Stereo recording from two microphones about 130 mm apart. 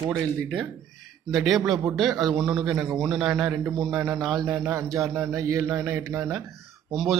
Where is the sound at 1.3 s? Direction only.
Centre (ahead or behind).